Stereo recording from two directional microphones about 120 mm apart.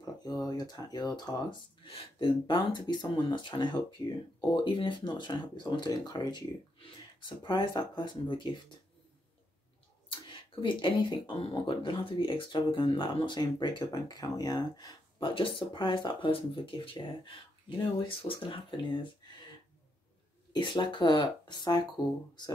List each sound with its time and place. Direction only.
0.0 s speech: 30° left (ahead or behind)
1.9 s speech: 50° left (ahead or behind)
10.0 s speech: 45° left (ahead or behind)
20.5 s speech: 40° left (ahead or behind)